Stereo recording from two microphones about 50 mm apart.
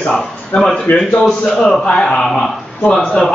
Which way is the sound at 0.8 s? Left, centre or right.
Left.